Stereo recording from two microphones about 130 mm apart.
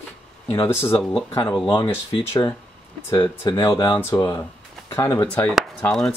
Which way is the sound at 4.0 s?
20° left (ahead or behind).